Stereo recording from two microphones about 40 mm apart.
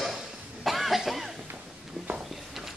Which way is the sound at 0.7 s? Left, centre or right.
Centre.